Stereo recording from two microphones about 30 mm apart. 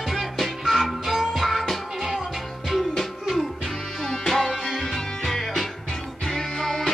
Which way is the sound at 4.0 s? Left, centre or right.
Centre.